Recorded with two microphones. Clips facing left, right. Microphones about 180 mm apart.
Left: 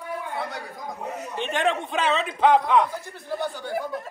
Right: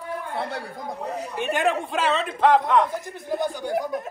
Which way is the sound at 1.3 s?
10° right (ahead or behind).